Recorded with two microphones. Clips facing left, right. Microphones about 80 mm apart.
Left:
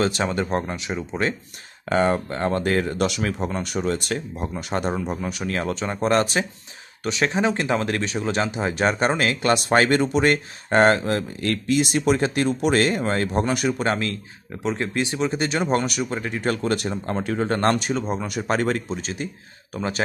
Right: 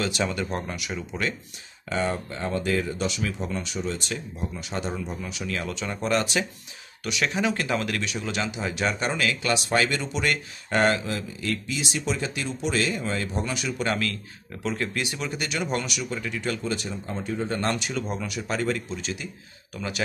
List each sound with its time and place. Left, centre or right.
0.0 s speech: left
1.9 s speech: left
13.8 s speech: left
17.2 s speech: left
17.9 s speech: left
18.2 s speech: left